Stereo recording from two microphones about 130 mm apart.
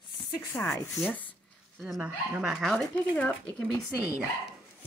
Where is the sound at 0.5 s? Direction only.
25° left (ahead or behind).